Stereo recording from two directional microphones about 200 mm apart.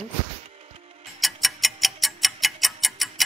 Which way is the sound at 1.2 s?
Centre (ahead or behind).